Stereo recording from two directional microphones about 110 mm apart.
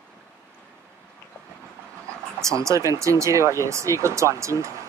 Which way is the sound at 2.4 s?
30° right (ahead or behind).